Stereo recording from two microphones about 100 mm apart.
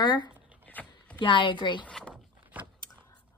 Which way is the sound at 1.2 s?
55° left (ahead or behind).